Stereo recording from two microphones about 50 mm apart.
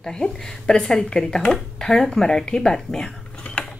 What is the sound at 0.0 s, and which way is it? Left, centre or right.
Speech, centre.